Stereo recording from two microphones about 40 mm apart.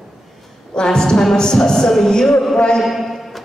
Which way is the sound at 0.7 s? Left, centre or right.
Centre.